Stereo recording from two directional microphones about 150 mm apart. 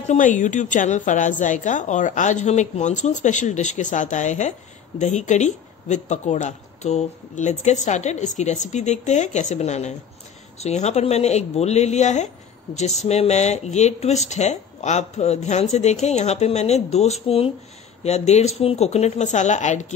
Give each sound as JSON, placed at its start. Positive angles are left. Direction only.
{"t": 0.1, "sound": "a woman's voice", "side_deg": 55}